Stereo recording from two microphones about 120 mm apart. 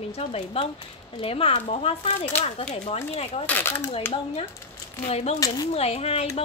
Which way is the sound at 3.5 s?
20° left (ahead or behind).